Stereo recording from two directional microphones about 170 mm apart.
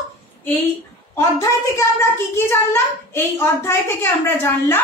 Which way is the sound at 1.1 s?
15° left (ahead or behind).